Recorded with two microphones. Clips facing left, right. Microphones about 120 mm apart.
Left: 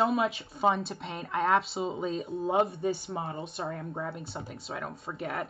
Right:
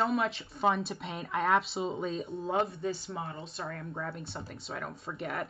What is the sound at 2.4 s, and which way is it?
Speech, 25° left (ahead or behind).